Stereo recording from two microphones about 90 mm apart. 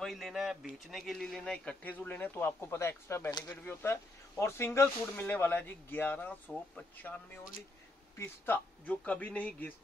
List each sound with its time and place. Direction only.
0.0 s a man's voice: centre (ahead or behind); by 6.5 s 20° left (ahead or behind)
8.8 s a man's voice: 15° left (ahead or behind)